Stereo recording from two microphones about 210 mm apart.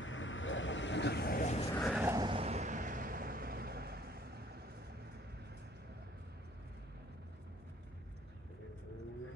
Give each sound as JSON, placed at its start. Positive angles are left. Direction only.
{"t": 0.0, "sound": "vehicle", "side_deg": 65}
{"t": 1.7, "sound": "a sound", "side_deg": 0}
{"t": 2.0, "sound": "vehicle", "side_deg": -20}